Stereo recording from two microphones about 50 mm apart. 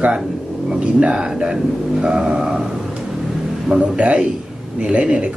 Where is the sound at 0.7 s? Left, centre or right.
Centre.